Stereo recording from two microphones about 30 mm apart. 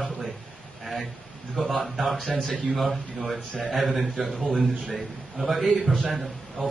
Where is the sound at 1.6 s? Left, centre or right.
Centre.